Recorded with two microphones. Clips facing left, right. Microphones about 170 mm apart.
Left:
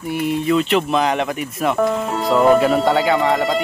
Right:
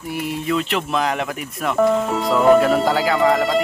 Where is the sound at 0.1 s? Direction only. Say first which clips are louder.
Left 4 dB; centre (ahead or behind).